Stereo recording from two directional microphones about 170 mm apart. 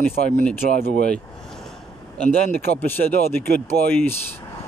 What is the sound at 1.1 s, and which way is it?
Speech, 5° left (ahead or behind).